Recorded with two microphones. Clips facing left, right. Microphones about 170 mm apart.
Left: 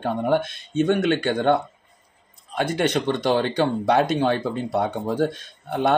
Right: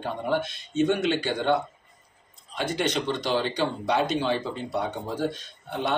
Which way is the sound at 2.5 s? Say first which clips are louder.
Left 5 dB; 55° left (ahead or behind).